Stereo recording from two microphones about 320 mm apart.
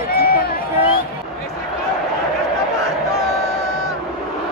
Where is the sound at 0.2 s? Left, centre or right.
Left.